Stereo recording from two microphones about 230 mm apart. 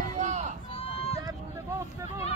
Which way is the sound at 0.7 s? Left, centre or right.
Left.